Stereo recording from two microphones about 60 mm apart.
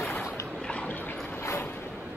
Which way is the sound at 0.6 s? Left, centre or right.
Centre.